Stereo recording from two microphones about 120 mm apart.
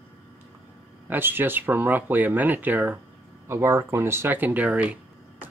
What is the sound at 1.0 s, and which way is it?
Speech, 15° right (ahead or behind).